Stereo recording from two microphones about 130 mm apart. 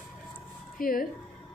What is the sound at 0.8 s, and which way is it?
Speech, 90° left.